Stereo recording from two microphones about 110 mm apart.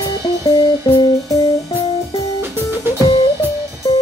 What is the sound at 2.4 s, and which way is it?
Music, 20° right (ahead or behind).